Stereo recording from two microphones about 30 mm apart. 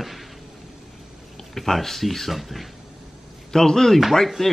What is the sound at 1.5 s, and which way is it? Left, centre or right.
Speech, centre.